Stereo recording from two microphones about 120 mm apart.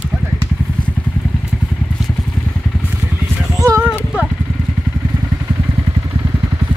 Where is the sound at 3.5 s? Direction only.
30° right (ahead or behind).